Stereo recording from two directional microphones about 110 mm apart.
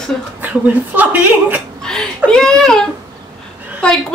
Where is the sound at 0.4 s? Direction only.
15° right (ahead or behind).